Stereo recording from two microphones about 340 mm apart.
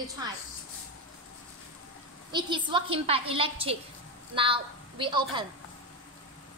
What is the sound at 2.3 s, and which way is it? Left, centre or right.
A woman's voice, centre.